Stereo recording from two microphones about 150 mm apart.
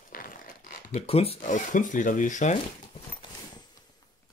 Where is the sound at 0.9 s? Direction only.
40° left (ahead or behind).